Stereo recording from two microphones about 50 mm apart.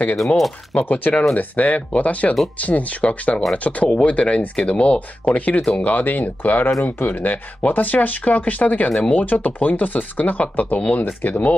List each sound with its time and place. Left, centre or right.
0.7 s speech: left